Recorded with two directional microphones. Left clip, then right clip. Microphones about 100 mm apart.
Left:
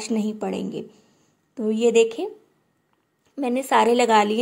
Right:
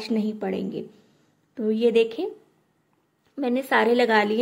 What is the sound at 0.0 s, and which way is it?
A woman's voice, 40° left (ahead or behind).